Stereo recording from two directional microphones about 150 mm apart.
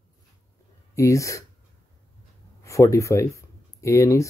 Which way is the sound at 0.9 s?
20° left (ahead or behind).